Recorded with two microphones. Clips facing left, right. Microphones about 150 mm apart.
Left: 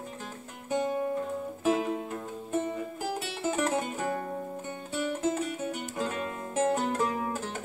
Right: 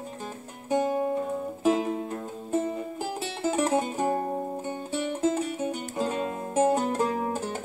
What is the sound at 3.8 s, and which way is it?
Music, 25° right (ahead or behind).